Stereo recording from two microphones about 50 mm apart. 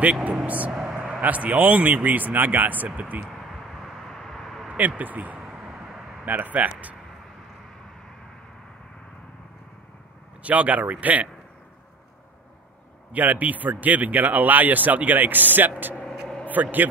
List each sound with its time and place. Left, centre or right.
0.0 s speech: right
0.7 s vehicle: right
1.2 s speech: right
3.3 s a sound: centre
4.6 s speech: right
5.8 s a sound: centre
6.2 s speech: right
10.4 s speech: right
13.1 s speech: right